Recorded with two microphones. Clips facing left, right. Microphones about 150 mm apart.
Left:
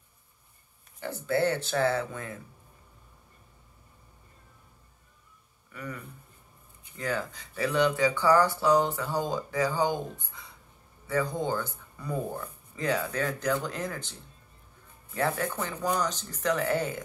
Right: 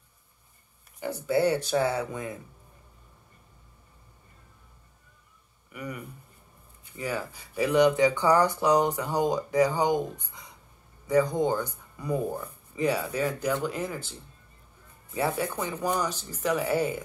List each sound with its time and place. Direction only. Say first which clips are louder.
0.9 s speech: right 2 dB; 15° right (ahead or behind)
5.7 s a sound: right 2 dB; 15° right (ahead or behind)
7.0 s speech: even; 10° right (ahead or behind)
15.1 s speech: right 1 dB; 10° right (ahead or behind)